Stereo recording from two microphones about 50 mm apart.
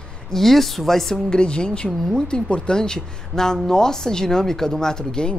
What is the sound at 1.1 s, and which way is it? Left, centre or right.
A woman's voice, centre.